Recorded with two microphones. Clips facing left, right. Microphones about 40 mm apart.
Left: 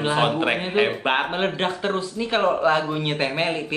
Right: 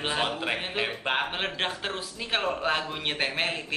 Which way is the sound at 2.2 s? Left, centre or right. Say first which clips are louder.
Left 5 dB; centre.